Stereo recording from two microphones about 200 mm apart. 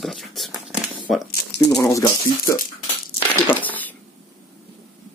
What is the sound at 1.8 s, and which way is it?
Speech, 15° left (ahead or behind).